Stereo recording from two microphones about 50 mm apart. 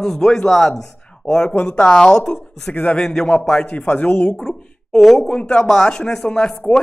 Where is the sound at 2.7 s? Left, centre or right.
Left.